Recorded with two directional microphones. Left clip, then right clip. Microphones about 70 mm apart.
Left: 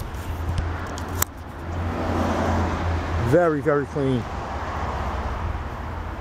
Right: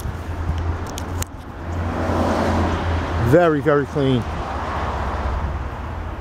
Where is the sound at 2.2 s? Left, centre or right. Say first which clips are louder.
Right 4 dB; right.